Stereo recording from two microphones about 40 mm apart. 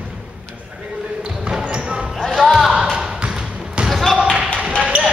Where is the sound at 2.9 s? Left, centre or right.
Right.